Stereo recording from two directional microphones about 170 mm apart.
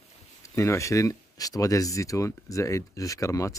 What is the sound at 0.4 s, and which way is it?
Speech, 15° left (ahead or behind).